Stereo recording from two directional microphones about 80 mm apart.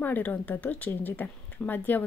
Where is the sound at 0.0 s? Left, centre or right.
Left.